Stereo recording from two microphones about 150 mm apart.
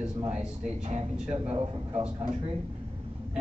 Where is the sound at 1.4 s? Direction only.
40° right (ahead or behind).